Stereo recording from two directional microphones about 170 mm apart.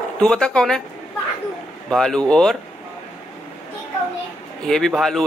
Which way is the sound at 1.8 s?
5° left (ahead or behind).